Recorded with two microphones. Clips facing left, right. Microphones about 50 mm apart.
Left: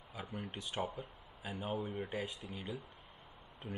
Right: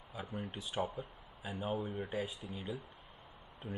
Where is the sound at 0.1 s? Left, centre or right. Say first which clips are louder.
Right 1 dB; centre.